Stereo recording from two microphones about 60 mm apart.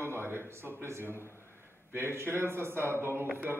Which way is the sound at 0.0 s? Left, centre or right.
Right.